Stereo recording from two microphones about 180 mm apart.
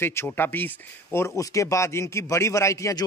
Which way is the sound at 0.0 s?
15° left (ahead or behind).